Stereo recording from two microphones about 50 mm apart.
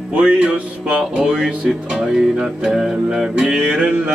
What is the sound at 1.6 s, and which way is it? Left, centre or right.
Music, centre.